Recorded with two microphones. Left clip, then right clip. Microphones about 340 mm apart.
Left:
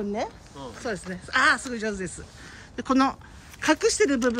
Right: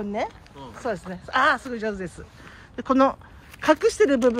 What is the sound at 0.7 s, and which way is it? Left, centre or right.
Speech, centre.